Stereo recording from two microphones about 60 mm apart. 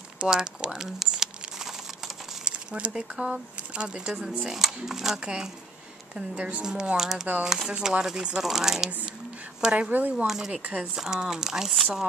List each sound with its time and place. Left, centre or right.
0.2 s speech: centre
0.8 s crumpling: centre
2.9 s speech: centre
9.8 s speech: right
10.1 s speech: centre
10.5 s speech: right
11.0 s speech: centre